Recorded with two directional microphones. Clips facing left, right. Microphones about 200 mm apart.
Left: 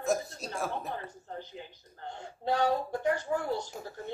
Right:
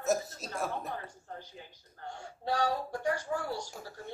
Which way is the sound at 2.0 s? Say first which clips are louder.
Left 2 dB; 20° left (ahead or behind).